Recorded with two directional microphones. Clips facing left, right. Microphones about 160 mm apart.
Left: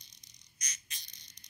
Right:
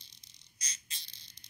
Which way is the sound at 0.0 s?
30° right (ahead or behind).